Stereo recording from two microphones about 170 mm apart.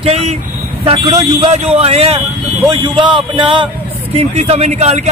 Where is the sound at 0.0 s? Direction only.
40° right (ahead or behind).